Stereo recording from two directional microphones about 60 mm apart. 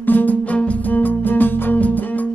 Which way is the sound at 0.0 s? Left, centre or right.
Left.